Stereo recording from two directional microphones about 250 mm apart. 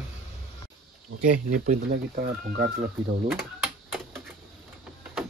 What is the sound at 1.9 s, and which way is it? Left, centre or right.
Speech, right.